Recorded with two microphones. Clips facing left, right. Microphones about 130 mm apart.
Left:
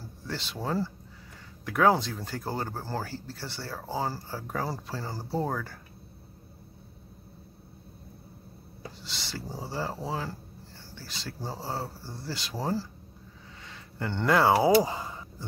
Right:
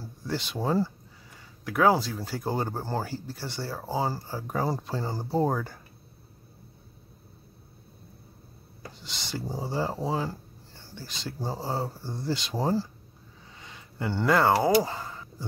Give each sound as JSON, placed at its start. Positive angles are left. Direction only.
{"t": 0.0, "sound": "speech", "side_deg": -15}
{"t": 1.6, "sound": "speech", "side_deg": 0}
{"t": 2.4, "sound": "speech", "side_deg": -20}
{"t": 9.0, "sound": "speech", "side_deg": -20}
{"t": 13.6, "sound": "a sound", "side_deg": -15}
{"t": 14.6, "sound": "speech", "side_deg": 10}